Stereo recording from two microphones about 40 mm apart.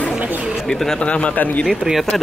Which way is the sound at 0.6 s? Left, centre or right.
Centre.